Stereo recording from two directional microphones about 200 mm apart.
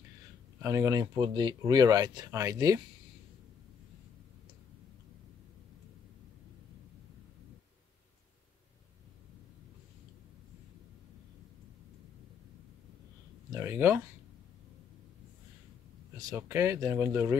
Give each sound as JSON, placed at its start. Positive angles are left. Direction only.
{"t": 0.6, "sound": "speech", "side_deg": -15}
{"t": 13.5, "sound": "speech", "side_deg": -10}
{"t": 16.2, "sound": "speech", "side_deg": -15}